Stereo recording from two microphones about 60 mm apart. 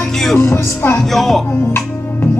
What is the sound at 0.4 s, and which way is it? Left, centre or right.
Music, left.